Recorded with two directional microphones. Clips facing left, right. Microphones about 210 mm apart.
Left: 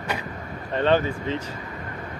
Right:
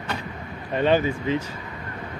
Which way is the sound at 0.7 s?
10° right (ahead or behind).